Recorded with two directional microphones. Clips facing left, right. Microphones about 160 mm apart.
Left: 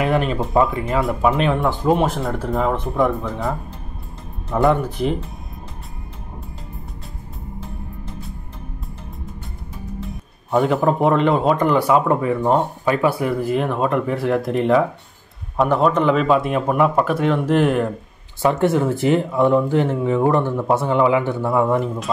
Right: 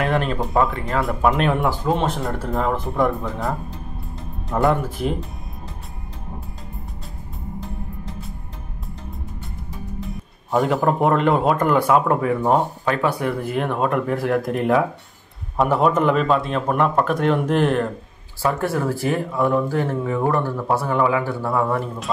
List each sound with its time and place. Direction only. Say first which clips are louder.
0.0 s speech: left 2 dB; 5° left (ahead or behind)
1.9 s speech: left 6 dB; 10° left (ahead or behind)
2.1 s speech: left 2 dB; centre (ahead or behind)
10.0 s speech: even; centre (ahead or behind)
16.3 s speech: left 3 dB; 10° left (ahead or behind)
18.4 s speech: left 4 dB; 20° left (ahead or behind)